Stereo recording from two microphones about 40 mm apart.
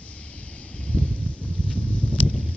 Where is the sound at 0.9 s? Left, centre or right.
Left.